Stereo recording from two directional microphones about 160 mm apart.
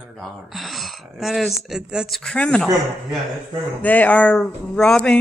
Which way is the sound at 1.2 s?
Centre (ahead or behind).